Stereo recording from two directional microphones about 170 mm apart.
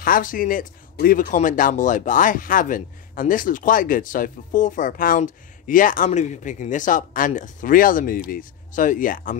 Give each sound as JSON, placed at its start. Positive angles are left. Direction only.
{"t": 0.0, "sound": "speech", "side_deg": 55}